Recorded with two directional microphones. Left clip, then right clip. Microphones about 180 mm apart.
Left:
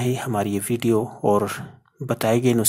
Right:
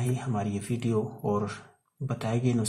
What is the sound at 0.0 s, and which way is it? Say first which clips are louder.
Speech: left 9 dB; 40° left (ahead or behind).